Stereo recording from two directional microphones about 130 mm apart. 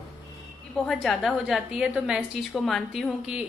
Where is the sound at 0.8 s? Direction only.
Centre (ahead or behind).